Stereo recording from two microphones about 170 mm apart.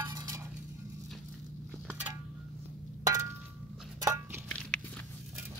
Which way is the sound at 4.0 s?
20° right (ahead or behind).